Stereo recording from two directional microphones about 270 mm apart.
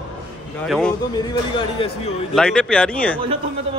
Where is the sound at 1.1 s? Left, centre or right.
Centre.